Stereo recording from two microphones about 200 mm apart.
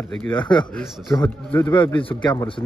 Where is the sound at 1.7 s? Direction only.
25° left (ahead or behind).